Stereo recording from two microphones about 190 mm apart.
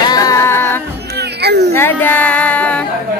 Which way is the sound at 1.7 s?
10° left (ahead or behind).